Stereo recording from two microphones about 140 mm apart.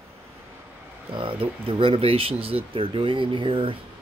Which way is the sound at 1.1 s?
40° right (ahead or behind).